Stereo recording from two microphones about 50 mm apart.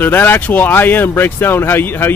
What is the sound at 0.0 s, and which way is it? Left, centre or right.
Speech, left.